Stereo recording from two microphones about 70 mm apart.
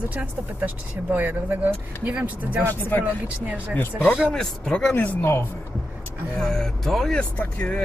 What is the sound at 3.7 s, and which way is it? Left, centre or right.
Speech, left.